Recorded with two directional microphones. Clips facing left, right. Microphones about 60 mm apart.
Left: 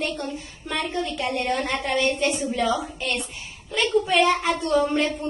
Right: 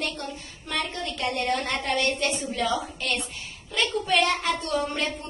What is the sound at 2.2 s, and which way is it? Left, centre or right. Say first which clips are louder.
A woman's voice: left 4 dB; centre.